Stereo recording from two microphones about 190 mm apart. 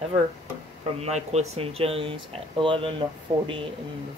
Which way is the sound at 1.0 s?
35° right (ahead or behind).